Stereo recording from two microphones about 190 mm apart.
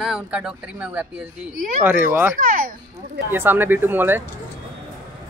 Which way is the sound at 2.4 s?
45° right (ahead or behind).